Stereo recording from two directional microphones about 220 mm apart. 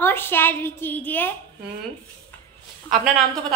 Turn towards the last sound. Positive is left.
turn(degrees=0)  # may be behind; listen again after turning